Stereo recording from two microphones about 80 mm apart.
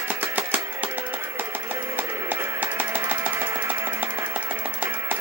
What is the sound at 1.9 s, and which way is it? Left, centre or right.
Music, right.